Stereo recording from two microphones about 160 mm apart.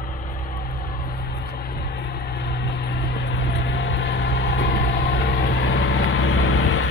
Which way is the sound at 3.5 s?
90° left.